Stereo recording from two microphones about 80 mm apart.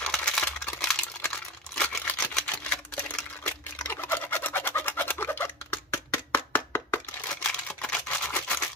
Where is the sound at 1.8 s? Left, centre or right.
Centre.